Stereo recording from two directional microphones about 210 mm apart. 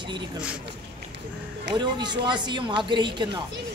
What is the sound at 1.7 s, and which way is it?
Speech, 20° right (ahead or behind).